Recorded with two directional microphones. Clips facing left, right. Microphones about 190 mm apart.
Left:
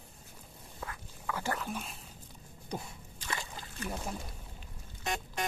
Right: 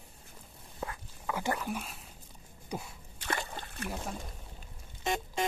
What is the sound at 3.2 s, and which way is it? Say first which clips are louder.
Splash: right 4 dB; 60° right (ahead or behind).